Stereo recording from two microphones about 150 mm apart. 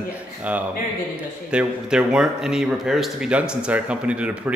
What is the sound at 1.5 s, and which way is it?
A man's voice, 5° right (ahead or behind).